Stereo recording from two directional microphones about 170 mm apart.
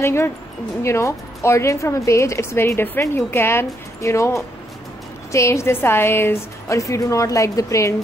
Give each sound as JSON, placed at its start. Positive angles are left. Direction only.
{"t": 0.0, "sound": "a woman's voice", "side_deg": 15}